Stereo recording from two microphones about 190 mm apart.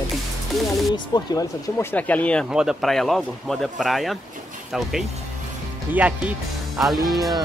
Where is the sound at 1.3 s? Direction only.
10° left (ahead or behind); by 6.9 s 5° right (ahead or behind).